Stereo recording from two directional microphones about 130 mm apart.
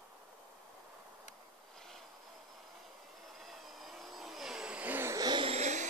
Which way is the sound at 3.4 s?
Centre (ahead or behind).